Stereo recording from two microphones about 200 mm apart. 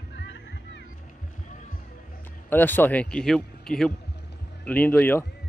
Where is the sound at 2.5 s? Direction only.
10° left (ahead or behind).